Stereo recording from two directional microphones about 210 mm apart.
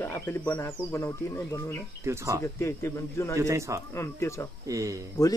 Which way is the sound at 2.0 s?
15° right (ahead or behind).